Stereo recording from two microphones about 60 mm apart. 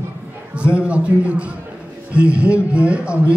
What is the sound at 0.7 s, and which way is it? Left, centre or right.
A man's voice, right.